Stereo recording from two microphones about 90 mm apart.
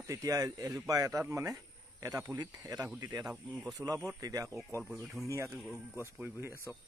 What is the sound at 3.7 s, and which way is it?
Speech, 40° right (ahead or behind).